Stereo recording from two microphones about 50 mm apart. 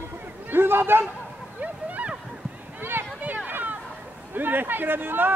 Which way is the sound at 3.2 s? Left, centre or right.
Right.